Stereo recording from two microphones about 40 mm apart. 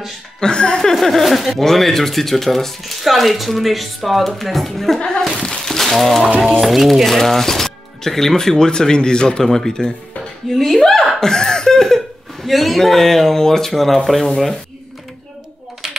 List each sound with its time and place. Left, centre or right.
0.4 s speech: left
0.9 s speech: centre
4.9 s speech: centre
5.4 s a sound: centre
6.6 s speech: centre; by 9.4 s left
9.4 s speech: centre
11.1 s a sound: centre
12.4 s speech: centre